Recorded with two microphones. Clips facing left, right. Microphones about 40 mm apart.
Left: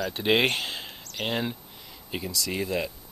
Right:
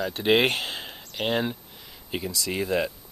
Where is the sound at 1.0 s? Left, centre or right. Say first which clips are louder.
Right 4 dB; centre.